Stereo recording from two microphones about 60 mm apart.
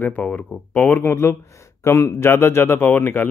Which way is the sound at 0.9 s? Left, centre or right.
Left.